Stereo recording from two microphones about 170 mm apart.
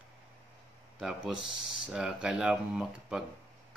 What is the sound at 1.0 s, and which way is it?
Speech, centre (ahead or behind).